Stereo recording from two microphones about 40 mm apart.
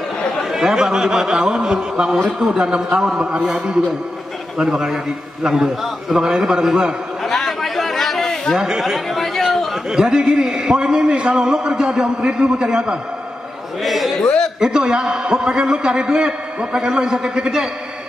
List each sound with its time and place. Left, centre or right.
0.5 s a man's voice: centre
7.2 s chatter: centre
8.7 s speech: centre
9.4 s chatter: centre
9.8 s a man's voice: centre
11.4 s a man's voice: centre
13.8 s a sound: centre
14.6 s a man's voice: centre